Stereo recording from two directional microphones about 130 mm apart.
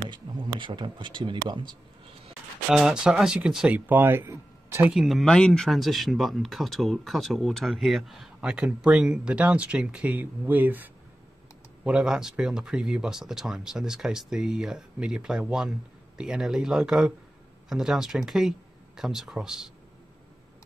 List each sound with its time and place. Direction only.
0.1 s speech: 35° right (ahead or behind)
2.7 s speech: 5° right (ahead or behind); by 4.8 s 20° right (ahead or behind)
4.9 s speech: centre (ahead or behind)